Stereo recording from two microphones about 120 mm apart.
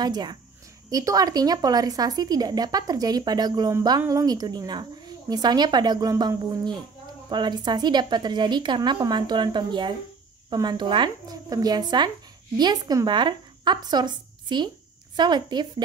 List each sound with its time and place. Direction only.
0.0 s a woman's voice: 35° right (ahead or behind)